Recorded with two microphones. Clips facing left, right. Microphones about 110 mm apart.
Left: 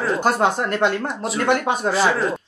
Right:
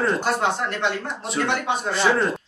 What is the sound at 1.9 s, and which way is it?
Speech, centre (ahead or behind).